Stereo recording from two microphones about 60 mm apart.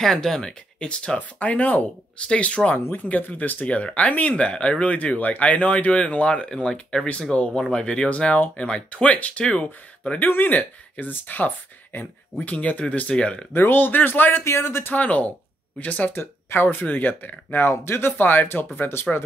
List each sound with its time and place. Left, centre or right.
0.0 s speech: centre
6.7 s speech: centre
13.5 s speech: left
14.4 s speech: left
14.9 s speech: left
16.1 s speech: left